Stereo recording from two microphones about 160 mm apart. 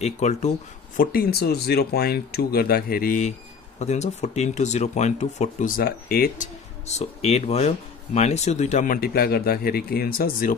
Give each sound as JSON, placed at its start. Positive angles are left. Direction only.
{"t": 0.0, "sound": "speech", "side_deg": 45}
{"t": 0.9, "sound": "speech", "side_deg": 70}
{"t": 5.8, "sound": "speech", "side_deg": 70}